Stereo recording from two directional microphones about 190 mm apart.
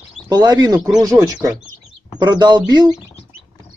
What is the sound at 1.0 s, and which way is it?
Speech, 20° right (ahead or behind).